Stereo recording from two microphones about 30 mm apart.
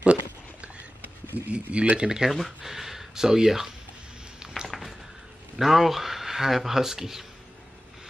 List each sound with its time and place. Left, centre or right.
0.0 s a sound: right
1.5 s speech: right
2.2 s speech: centre
2.6 s speech: centre
4.7 s a sound: centre
5.6 s speech: centre